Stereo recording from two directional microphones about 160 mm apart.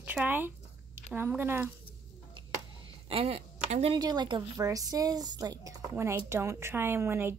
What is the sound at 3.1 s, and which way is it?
Speech, 40° right (ahead or behind).